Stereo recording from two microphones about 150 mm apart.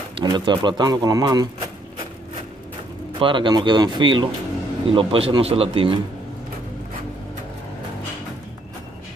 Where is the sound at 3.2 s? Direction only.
30° right (ahead or behind).